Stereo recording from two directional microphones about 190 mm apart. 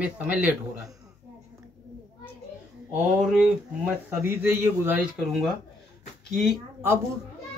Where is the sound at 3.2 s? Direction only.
5° right (ahead or behind).